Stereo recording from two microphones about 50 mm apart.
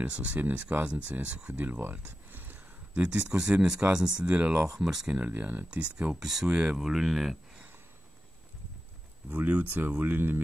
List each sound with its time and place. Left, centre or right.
0.0 s speech: right
0.4 s speech: right
0.8 s speech: right
1.5 s speech: right
1.8 s speech: right
2.3 s a sound: right
2.9 s speech: right
4.2 s speech: right
4.6 s speech: centre
5.2 s speech: right
6.1 s speech: centre
9.3 s speech: right